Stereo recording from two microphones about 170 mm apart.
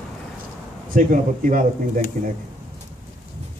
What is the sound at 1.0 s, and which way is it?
A man's voice, 50° right (ahead or behind).